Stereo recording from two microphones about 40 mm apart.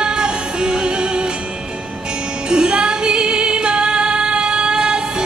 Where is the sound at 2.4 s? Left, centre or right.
Right.